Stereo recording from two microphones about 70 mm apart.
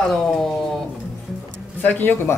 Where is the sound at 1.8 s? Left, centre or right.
Left.